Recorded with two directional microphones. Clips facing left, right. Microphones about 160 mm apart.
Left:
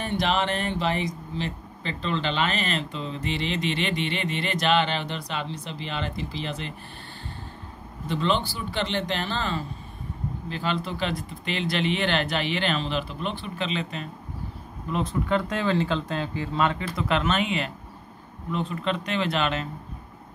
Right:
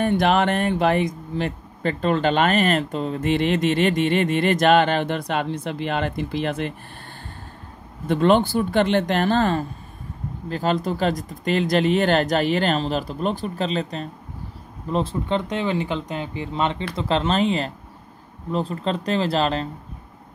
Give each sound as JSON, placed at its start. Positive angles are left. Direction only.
{"t": 0.0, "sound": "speech", "side_deg": -55}
{"t": 8.1, "sound": "speech", "side_deg": -50}